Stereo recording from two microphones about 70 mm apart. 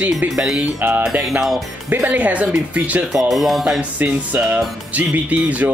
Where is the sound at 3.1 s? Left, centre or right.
Centre.